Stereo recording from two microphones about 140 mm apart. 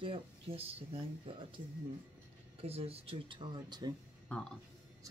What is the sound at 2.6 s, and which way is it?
Speech, 45° right (ahead or behind).